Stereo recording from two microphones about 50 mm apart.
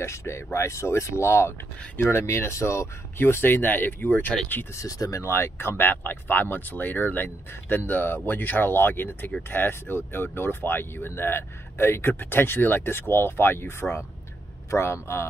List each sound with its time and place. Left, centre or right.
0.0 s speech: left
3.2 s speech: left
4.7 s speech: left
5.3 s speech: left